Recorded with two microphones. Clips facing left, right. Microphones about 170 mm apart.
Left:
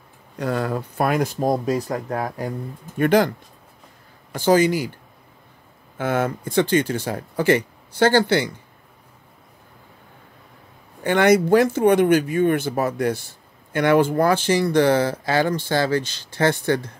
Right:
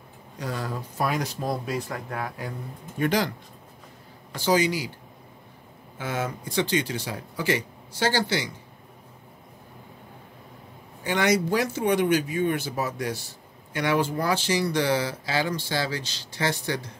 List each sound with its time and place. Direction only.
0.4 s speech: 60° left (ahead or behind); by 2.5 s 40° left (ahead or behind)
3.0 s speech: 55° left (ahead or behind)
5.9 s speech: 55° left (ahead or behind)
11.1 s speech: 55° left (ahead or behind)